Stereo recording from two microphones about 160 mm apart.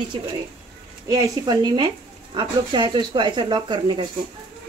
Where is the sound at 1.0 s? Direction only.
25° right (ahead or behind).